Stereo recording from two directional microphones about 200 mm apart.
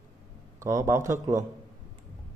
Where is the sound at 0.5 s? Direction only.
15° right (ahead or behind).